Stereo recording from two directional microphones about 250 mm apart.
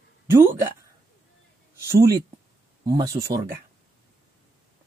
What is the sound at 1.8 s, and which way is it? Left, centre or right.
Speech, centre.